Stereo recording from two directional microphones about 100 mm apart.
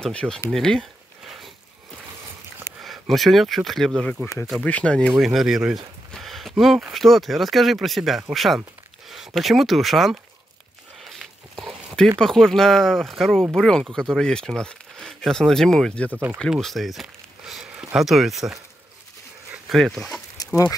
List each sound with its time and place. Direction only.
0.0 s speech: 5° left (ahead or behind)
0.5 s a sound: 5° left (ahead or behind)
2.8 s speech: centre (ahead or behind)
5.1 s speech: centre (ahead or behind)
11.0 s a sound: centre (ahead or behind)
12.2 s speech: 5° left (ahead or behind)
16.1 s speech: 20° right (ahead or behind)
16.3 s speech: centre (ahead or behind)
19.7 s speech: 5° left (ahead or behind)
20.4 s pig: 40° left (ahead or behind)